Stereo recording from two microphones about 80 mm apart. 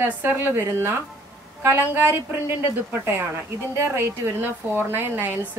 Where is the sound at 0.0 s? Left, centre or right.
Right.